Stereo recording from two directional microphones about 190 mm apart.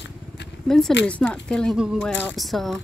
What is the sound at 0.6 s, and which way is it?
Speech, centre (ahead or behind).